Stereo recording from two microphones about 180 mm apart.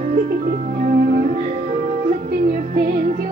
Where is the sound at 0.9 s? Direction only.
50° right (ahead or behind).